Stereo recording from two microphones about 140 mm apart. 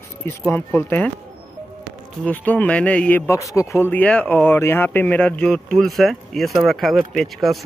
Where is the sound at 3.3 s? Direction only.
20° left (ahead or behind).